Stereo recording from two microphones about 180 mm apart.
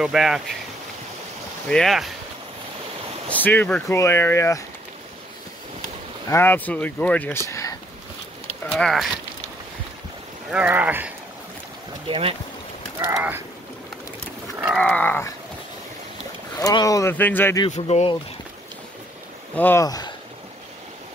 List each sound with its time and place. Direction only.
0.0 s speech: 5° right (ahead or behind)
1.7 s speech: centre (ahead or behind)
3.4 s speech: 10° left (ahead or behind)
6.2 s speech: 15° left (ahead or behind)
7.4 s a sound: 15° left (ahead or behind)
8.7 s speech: centre (ahead or behind)
10.5 s speech: 10° right (ahead or behind)
12.1 s speech: 30° right (ahead or behind)
13.1 s speech: 10° right (ahead or behind)
14.8 s speech: 10° left (ahead or behind)
16.5 s speech: 20° left (ahead or behind)
17.6 s speech: 40° left (ahead or behind)
19.5 s speech: 10° left (ahead or behind)